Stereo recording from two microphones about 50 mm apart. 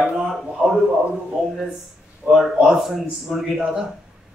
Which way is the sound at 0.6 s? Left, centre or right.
Right.